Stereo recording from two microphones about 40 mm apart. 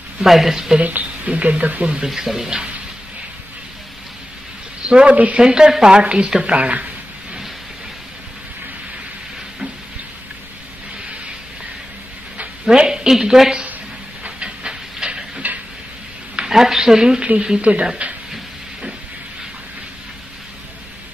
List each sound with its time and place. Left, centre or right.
0.2 s a woman's voice: centre
0.7 s a woman's voice: right
2.0 s a woman's voice: centre
4.8 s speech: right
5.1 s a woman's voice: right
5.4 s a woman's voice: centre; by 6.9 s right
12.6 s a woman's voice: centre
14.4 s train: right
16.4 s a woman's voice: centre
17.2 s a woman's voice: right